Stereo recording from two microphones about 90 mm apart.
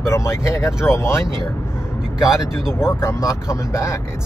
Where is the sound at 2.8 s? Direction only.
30° left (ahead or behind).